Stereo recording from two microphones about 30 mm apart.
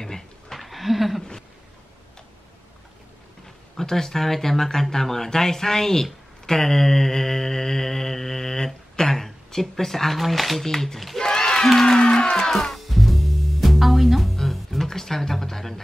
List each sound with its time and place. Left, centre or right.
0.5 s a sound: centre
3.4 s speech: centre
6.4 s mantra: centre
10.6 s speech: centre
11.1 s music: left
12.4 s music: centre
12.8 s music: centre
14.3 s music: centre
14.9 s a sound: centre